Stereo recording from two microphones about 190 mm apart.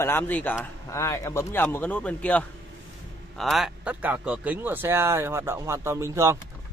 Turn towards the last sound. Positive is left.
turn(degrees=-15)  # may be behind; listen again after turning